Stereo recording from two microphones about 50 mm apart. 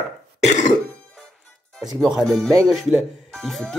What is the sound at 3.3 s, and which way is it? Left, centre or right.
Speech, centre.